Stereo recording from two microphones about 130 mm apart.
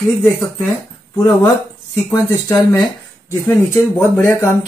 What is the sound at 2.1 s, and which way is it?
Speech, 20° left (ahead or behind).